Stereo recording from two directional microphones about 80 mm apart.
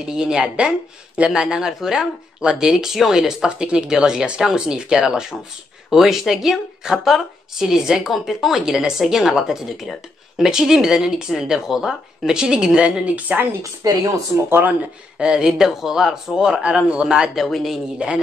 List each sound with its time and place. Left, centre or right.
0.0 s speech: centre
13.6 s speech: right
15.1 s speech: centre
17.5 s speech: centre
17.9 s speech: centre